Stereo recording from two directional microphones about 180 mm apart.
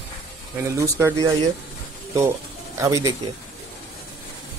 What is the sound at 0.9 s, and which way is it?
Music, 15° right (ahead or behind).